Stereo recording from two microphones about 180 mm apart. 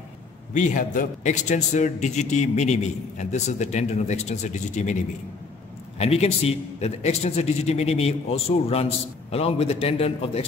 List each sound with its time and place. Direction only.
0.6 s a man's voice: 45° left (ahead or behind)
5.9 s a man's voice: 35° left (ahead or behind)